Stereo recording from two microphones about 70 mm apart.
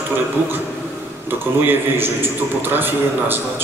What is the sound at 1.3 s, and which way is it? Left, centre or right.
A man's voice, right.